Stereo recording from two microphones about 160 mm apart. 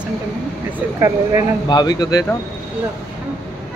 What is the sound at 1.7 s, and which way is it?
Speech, 25° left (ahead or behind).